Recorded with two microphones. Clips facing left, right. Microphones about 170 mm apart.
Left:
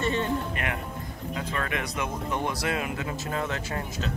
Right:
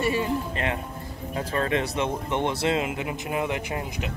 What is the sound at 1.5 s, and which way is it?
Speech, 30° right (ahead or behind).